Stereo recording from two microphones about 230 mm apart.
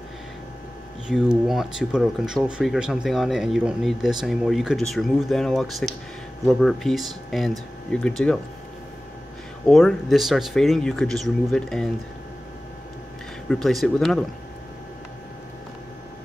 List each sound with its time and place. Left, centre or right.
1.0 s speech: centre
9.7 s speech: centre
13.5 s speech: centre